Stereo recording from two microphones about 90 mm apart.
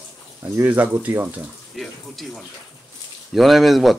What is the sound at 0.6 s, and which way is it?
Speech, 20° right (ahead or behind).